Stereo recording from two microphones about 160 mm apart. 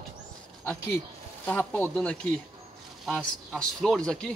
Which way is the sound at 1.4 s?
10° left (ahead or behind).